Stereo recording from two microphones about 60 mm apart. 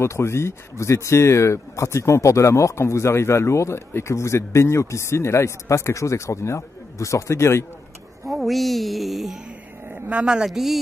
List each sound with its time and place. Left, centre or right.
0.0 s speech: left
8.3 s a sound: centre
9.8 s speech: right; by 10.8 s centre